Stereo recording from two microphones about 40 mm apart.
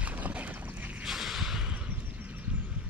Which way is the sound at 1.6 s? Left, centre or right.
Right.